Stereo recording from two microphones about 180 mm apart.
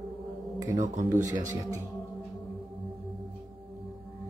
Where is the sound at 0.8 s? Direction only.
45° right (ahead or behind).